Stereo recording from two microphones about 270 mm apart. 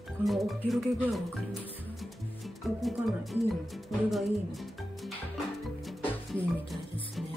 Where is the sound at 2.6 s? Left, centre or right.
Centre.